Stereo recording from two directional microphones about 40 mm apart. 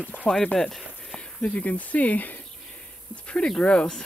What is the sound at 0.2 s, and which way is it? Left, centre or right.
Speech, centre.